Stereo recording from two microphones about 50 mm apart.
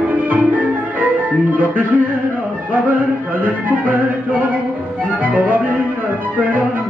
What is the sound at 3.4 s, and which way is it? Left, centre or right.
Music, right.